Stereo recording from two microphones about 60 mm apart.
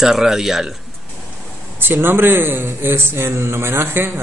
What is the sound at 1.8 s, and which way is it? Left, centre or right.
Speech, right.